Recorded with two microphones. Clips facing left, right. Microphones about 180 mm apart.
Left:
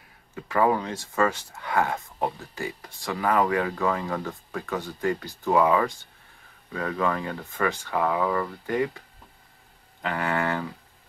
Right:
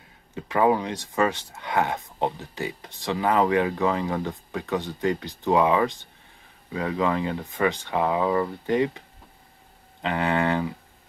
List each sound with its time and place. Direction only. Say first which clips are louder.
0.3 s speech: right 2 dB; 20° right (ahead or behind)
10.0 s speech: right 3 dB; 20° right (ahead or behind)